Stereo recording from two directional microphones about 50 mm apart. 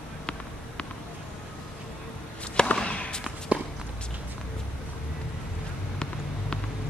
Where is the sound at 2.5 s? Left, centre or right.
Centre.